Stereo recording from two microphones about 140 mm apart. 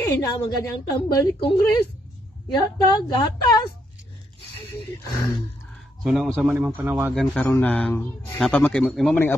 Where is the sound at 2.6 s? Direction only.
30° left (ahead or behind).